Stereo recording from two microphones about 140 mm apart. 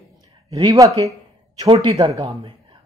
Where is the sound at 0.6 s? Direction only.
25° right (ahead or behind).